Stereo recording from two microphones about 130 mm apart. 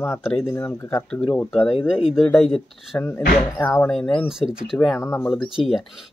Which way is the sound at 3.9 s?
5° left (ahead or behind).